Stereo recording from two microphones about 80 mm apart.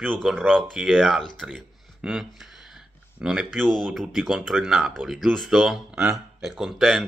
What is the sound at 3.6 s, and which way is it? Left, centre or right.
Speech, centre.